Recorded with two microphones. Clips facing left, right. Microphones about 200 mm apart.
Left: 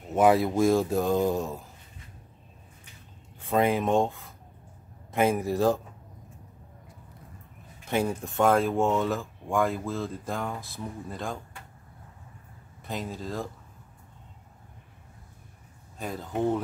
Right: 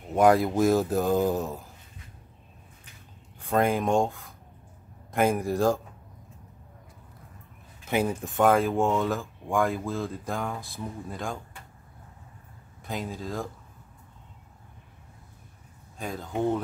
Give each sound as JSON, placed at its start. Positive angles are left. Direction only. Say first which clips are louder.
{"t": 0.1, "sound": "speech", "louder": "right 1 dB", "side_deg": 0}
{"t": 3.3, "sound": "speech", "louder": "even", "side_deg": 0}
{"t": 7.9, "sound": "speech", "louder": "right 1 dB", "side_deg": -5}
{"t": 12.8, "sound": "speech", "louder": "right 1 dB", "side_deg": 0}
{"t": 16.0, "sound": "speech", "louder": "even", "side_deg": 5}